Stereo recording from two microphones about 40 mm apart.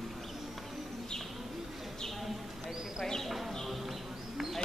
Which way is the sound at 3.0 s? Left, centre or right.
Centre.